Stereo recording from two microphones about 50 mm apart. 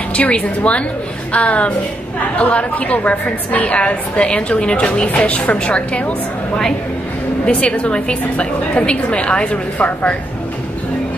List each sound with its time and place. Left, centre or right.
0.1 s a woman's voice: left